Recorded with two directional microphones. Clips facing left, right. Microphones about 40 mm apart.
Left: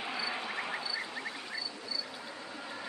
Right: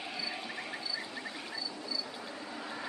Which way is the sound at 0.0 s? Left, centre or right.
Left.